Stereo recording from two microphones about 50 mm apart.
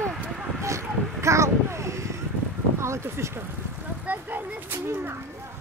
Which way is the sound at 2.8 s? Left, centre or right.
Right.